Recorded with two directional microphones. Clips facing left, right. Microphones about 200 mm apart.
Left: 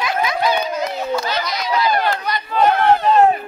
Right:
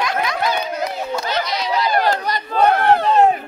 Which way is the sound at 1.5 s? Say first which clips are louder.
Left 1 dB; 30° right (ahead or behind).